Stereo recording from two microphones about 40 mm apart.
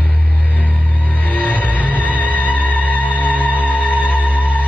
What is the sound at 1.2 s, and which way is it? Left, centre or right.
Music, left.